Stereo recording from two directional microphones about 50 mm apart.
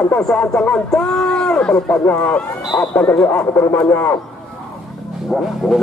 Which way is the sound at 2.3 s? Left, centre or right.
Left.